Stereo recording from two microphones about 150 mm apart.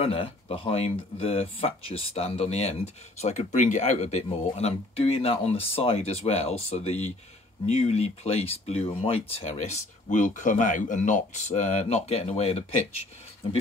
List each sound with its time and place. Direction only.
0.0 s speech: 40° left (ahead or behind)